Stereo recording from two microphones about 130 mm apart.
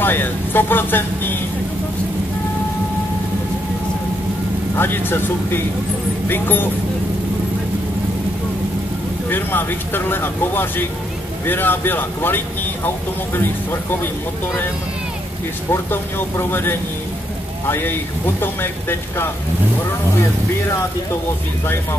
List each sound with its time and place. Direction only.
0.0 s speech: 15° left (ahead or behind)
4.7 s speech: 15° left (ahead or behind)
9.3 s speech: 15° left (ahead or behind)
15.7 s speech: 15° left (ahead or behind)